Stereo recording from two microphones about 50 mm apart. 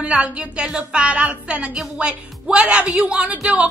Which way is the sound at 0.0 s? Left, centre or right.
Right.